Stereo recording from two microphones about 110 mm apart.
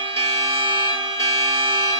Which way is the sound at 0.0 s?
50° right (ahead or behind).